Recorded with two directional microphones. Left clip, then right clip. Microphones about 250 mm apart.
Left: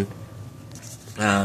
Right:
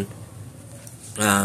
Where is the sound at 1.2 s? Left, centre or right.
Centre.